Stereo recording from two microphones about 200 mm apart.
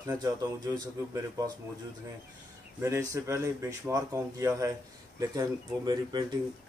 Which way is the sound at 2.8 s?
15° right (ahead or behind).